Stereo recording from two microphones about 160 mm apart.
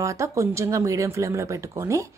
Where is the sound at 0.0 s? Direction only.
20° right (ahead or behind).